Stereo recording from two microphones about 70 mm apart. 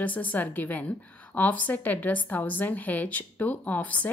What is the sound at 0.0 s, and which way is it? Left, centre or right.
A woman's voice, left.